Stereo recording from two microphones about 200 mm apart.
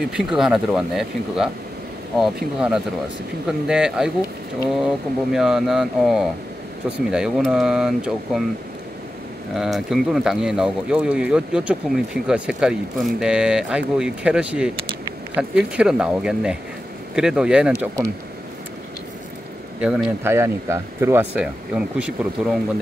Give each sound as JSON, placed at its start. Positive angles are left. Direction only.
{"t": 0.1, "sound": "speech", "side_deg": 0}
{"t": 9.6, "sound": "speech", "side_deg": 0}
{"t": 19.8, "sound": "speech", "side_deg": 0}
{"t": 20.2, "sound": "speech", "side_deg": -15}